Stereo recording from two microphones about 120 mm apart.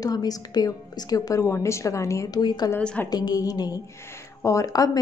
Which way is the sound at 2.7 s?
15° left (ahead or behind).